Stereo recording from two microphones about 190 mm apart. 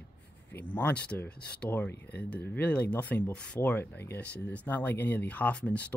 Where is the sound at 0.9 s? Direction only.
55° left (ahead or behind).